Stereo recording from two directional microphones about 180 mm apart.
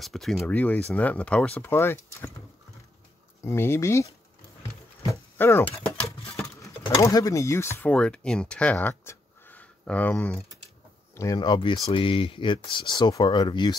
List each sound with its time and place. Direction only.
0.0 s speech: centre (ahead or behind)
3.4 s speech: 15° left (ahead or behind)
5.4 s speech: 10° left (ahead or behind)
6.0 s a sound: 30° left (ahead or behind)
6.3 s speech: 20° left (ahead or behind)
11.1 s speech: 20° left (ahead or behind)